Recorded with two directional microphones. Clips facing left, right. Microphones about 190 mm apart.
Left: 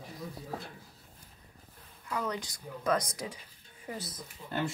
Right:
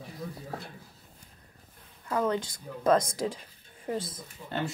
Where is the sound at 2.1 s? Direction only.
25° right (ahead or behind).